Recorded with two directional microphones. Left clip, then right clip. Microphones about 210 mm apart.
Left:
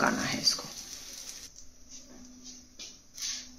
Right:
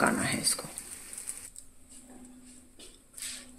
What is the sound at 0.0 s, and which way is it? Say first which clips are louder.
Speech: left 1 dB; 20° right (ahead or behind).